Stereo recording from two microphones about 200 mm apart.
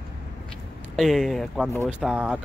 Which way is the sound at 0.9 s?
Centre (ahead or behind).